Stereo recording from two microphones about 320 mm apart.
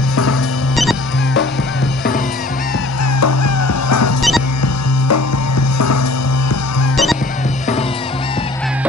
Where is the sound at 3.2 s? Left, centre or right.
Left.